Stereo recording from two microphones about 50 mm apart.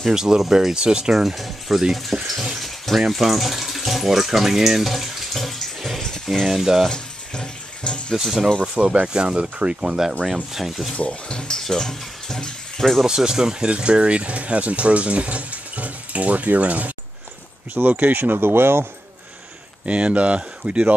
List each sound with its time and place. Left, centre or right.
0.1 s speech: centre
6.9 s bathtub: centre
8.1 s speech: centre
8.7 s speech: right; by 10.9 s centre
11.0 s speech: left
11.6 s water tap: centre
13.0 s speech: centre; by 18.9 s right
19.9 s speech: right